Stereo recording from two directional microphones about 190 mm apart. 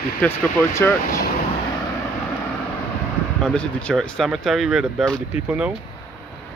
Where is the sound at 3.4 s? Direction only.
5° left (ahead or behind).